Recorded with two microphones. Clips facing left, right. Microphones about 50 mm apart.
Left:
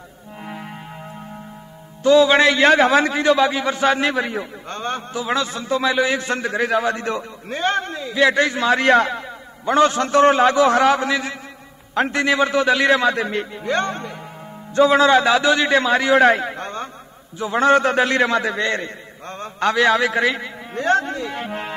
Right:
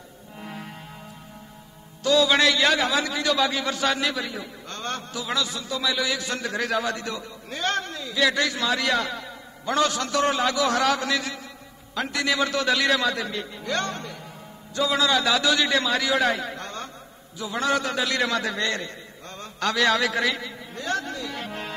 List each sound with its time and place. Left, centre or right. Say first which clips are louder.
0.4 s music: left 4 dB; centre
2.0 s a man's voice: left 7 dB; left
11.9 s a man's voice: left 7 dB; left
13.6 s speech: left 5 dB; left
14.7 s a man's voice: left 9 dB; left